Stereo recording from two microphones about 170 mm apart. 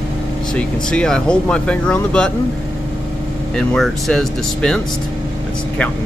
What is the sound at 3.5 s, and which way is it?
Speech, 5° left (ahead or behind).